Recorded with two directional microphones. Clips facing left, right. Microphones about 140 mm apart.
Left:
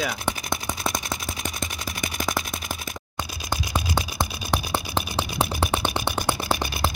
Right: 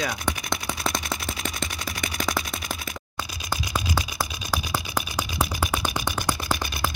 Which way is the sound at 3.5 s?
20° left (ahead or behind).